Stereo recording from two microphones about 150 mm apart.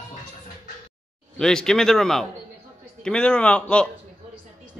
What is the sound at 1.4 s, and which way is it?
A man's voice, 5° left (ahead or behind).